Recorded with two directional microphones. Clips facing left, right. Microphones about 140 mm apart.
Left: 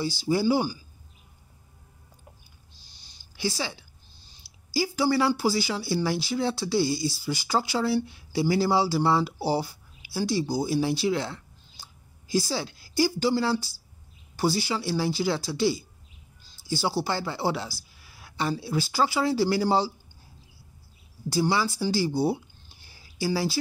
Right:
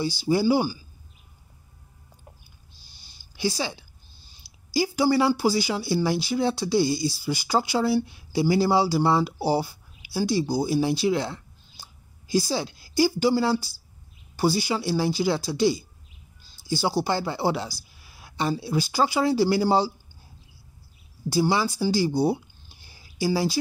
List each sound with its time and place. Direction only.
0.0 s speech: 15° right (ahead or behind)
3.3 s speech: 15° right (ahead or behind)
21.3 s speech: 15° right (ahead or behind)